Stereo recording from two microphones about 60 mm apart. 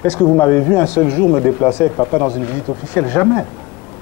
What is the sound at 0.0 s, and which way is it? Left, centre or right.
Speech, left.